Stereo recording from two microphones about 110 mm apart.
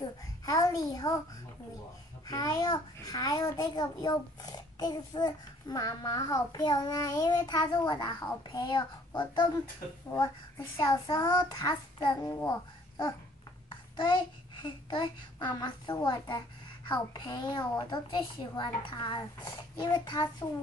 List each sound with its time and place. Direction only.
0.5 s a child's voice: 35° left (ahead or behind)
2.2 s a child's voice: 35° left (ahead or behind)
10.8 s a child's voice: 35° left (ahead or behind)
14.6 s a child's voice: 40° left (ahead or behind)